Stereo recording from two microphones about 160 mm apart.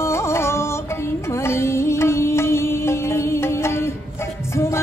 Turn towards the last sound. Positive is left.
turn(degrees=15)  # may be behind; listen again after turning